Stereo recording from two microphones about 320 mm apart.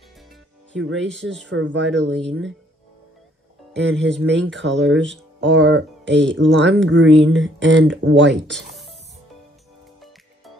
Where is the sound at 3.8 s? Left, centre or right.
Right.